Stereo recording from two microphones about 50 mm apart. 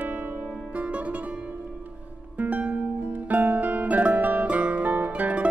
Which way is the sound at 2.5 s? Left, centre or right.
Right.